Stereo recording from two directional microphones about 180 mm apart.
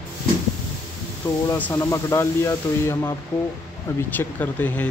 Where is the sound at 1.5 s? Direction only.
15° left (ahead or behind).